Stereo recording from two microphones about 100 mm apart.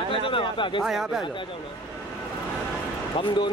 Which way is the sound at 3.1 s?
55° left (ahead or behind).